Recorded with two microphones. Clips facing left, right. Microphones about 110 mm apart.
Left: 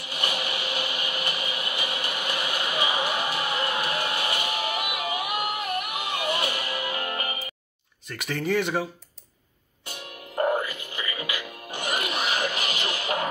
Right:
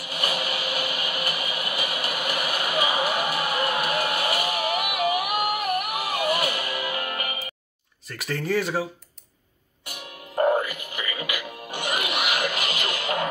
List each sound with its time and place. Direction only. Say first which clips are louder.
0.0 s a sound: right 2 dB; 25° left (ahead or behind)
2.8 s music: right 3 dB; 25° left (ahead or behind)
3.6 s music: right 3 dB; 25° right (ahead or behind)
4.7 s a sound: right 5 dB; 25° left (ahead or behind)
8.1 s speech: even; centre (ahead or behind)
10.3 s music: right 3 dB; 25° right (ahead or behind)
10.6 s music: right 2 dB; 25° left (ahead or behind)
12.0 s rub: right 1 dB; 15° right (ahead or behind)
12.4 s music: right 1 dB; 30° left (ahead or behind)